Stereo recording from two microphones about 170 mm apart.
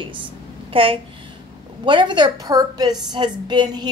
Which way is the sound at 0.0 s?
30° right (ahead or behind).